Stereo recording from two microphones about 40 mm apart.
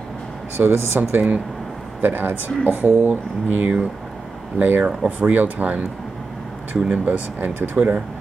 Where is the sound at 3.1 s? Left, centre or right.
Right.